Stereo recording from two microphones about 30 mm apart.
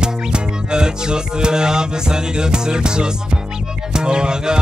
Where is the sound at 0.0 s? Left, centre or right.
Right.